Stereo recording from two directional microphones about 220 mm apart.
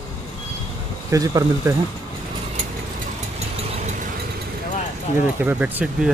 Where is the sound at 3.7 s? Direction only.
30° right (ahead or behind).